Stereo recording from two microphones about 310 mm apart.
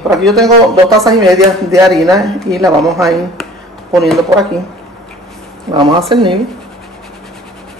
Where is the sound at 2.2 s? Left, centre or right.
Centre.